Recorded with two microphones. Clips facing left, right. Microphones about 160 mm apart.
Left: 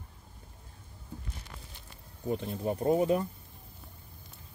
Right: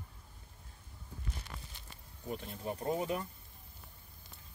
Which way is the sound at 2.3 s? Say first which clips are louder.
Left 8 dB; 30° left (ahead or behind).